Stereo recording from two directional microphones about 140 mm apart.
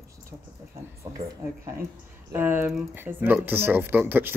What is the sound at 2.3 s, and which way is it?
Speech, 15° right (ahead or behind).